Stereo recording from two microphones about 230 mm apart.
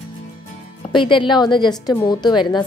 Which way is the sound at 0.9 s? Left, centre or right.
Left.